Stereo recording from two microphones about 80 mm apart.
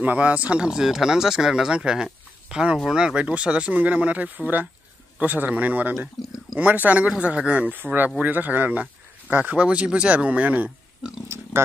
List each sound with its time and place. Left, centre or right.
0.0 s speech: centre
6.2 s speech: centre
6.5 s speech: centre
11.2 s pig: right